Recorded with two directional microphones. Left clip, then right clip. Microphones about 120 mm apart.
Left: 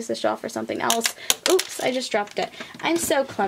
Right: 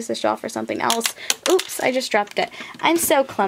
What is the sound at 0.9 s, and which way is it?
Speech, centre (ahead or behind).